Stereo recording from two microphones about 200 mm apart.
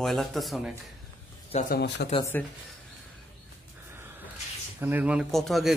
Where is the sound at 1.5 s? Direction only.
50° left (ahead or behind).